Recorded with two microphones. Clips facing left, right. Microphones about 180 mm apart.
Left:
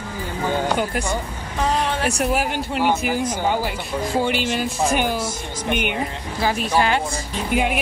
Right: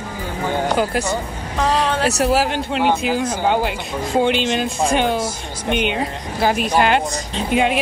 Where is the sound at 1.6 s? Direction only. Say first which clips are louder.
Right 3 dB; 80° right.